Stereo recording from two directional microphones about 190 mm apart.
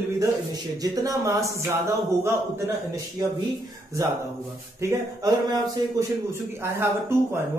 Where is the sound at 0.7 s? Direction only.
15° right (ahead or behind).